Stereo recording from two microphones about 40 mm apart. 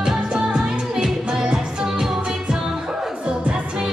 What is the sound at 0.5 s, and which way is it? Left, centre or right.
Music of asia, centre.